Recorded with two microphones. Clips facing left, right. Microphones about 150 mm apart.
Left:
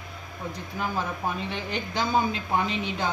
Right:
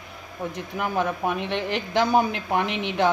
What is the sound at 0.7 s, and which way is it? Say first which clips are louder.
Speech: right 5 dB; 65° right (ahead or behind).